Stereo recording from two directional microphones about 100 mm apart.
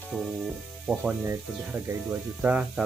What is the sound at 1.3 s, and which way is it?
Speech, 25° right (ahead or behind).